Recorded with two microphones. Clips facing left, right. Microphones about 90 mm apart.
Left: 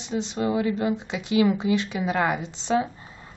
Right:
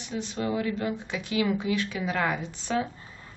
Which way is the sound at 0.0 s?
20° left (ahead or behind).